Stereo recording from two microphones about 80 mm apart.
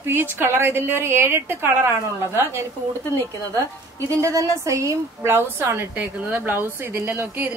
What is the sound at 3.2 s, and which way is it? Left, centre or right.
A woman's voice, right.